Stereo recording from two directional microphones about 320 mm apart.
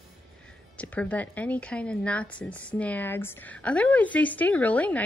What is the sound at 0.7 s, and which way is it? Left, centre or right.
A woman's voice, centre.